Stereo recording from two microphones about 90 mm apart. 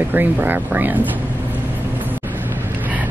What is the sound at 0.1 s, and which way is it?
Speech, 20° right (ahead or behind).